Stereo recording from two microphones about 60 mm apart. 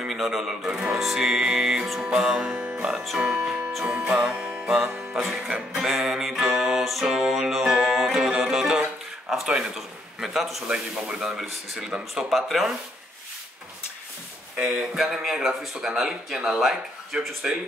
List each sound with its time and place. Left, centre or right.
0.0 s music: centre
3.2 s speech: centre
3.8 s music: right
9.3 s a man's voice: centre
11.1 s music: centre
12.3 s a man's voice: centre
14.6 s music: centre